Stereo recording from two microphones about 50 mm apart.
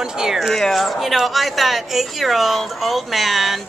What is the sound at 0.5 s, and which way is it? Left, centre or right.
A woman's voice, centre.